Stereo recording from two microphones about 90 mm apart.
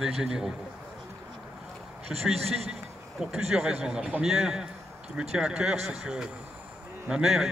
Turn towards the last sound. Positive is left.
turn(degrees=-5)  # may be behind; listen again after turning